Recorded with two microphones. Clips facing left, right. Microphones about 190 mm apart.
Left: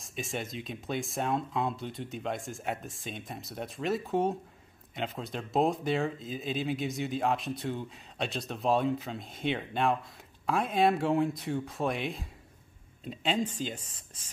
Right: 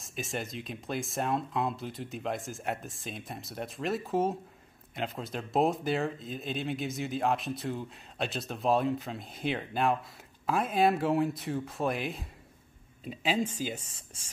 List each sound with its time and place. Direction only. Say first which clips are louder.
0.0 s speech: even; centre (ahead or behind)